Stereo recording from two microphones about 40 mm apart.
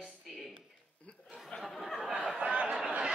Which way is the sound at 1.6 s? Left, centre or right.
Centre.